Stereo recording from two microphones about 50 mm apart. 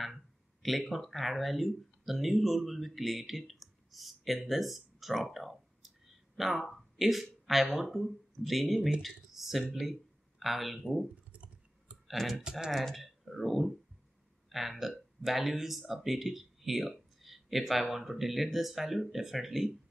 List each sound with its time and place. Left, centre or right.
0.0 s speech: centre
11.3 s clicking: right
12.1 s speech: centre
12.4 s speech: centre
12.7 s speech: centre